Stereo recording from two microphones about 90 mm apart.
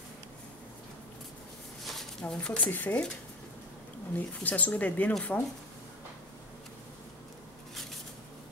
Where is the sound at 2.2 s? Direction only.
10° left (ahead or behind).